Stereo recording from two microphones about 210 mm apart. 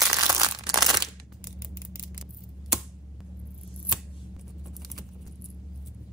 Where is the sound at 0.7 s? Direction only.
Centre (ahead or behind).